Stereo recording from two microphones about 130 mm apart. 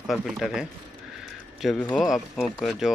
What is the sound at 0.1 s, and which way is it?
Speech, 5° right (ahead or behind).